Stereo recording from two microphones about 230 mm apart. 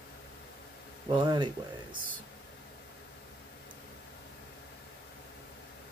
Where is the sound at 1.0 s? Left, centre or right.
Centre.